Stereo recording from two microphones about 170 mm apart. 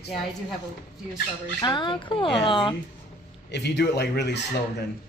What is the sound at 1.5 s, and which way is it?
Speech, 25° left (ahead or behind).